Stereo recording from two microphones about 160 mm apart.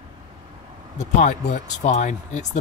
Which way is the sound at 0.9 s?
45° left (ahead or behind).